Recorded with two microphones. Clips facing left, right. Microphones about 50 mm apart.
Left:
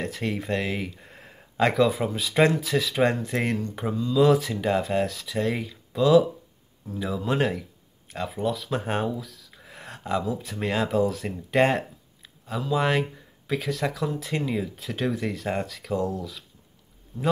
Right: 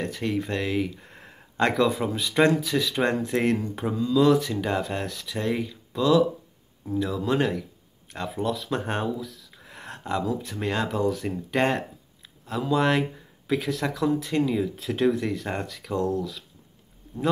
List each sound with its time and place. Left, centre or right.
0.0 s speech: centre
4.2 s speech: centre
8.1 s speech: centre